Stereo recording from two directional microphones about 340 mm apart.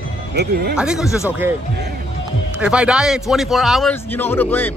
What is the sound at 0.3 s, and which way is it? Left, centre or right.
Speech, right.